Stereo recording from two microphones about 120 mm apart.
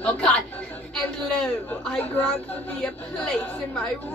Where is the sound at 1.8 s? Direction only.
10° left (ahead or behind).